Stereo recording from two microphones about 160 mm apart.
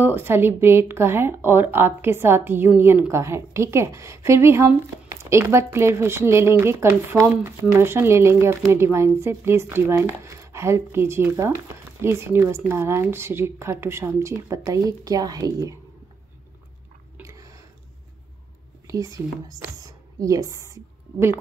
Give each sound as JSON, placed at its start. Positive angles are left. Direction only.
{"t": 0.0, "sound": "speech", "side_deg": -15}
{"t": 17.2, "sound": "chewing", "side_deg": -20}
{"t": 18.9, "sound": "speech", "side_deg": -20}